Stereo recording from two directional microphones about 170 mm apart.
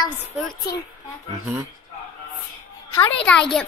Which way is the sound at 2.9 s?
10° left (ahead or behind).